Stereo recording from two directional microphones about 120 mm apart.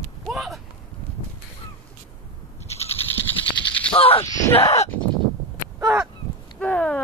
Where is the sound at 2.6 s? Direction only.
65° left (ahead or behind).